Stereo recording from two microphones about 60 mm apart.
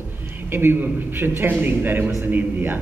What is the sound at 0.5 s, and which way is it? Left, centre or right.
A man's voice, right.